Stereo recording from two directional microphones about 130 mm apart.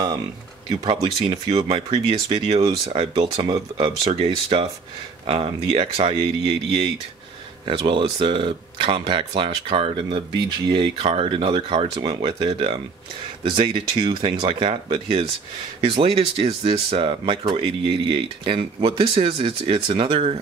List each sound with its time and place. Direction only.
0.7 s speech: 40° right (ahead or behind)
2.6 s speech: 25° right (ahead or behind)
2.9 s speech: 45° right (ahead or behind)
4.1 s speech: 45° right (ahead or behind)
7.6 s speech: 40° right (ahead or behind)
12.0 s speech: 40° right (ahead or behind)